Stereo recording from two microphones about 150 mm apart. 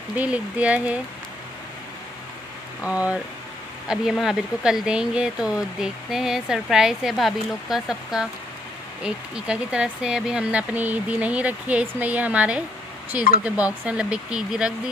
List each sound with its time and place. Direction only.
0.1 s speech: 10° right (ahead or behind)
2.8 s speech: 10° right (ahead or behind)